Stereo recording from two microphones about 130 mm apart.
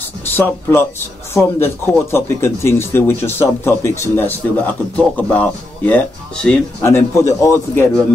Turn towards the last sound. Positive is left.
turn(degrees=20)  # may be behind; listen again after turning